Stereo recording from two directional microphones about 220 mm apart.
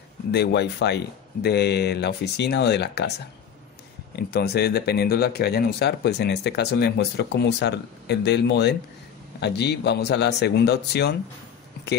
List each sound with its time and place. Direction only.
0.3 s speech: 50° left (ahead or behind)
4.1 s speech: 45° left (ahead or behind)